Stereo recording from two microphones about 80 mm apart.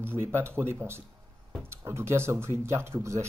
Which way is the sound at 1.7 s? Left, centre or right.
Right.